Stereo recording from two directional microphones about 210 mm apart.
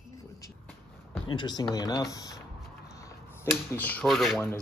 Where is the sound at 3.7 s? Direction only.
5° left (ahead or behind).